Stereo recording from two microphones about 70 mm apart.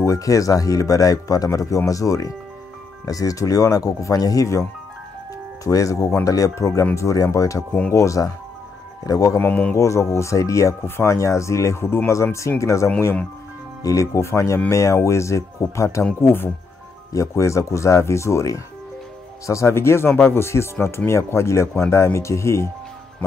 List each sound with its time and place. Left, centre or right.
0.0 s speech: left
9.4 s speech: left
9.8 s speech: left
16.2 s speech: left
17.1 s speech: left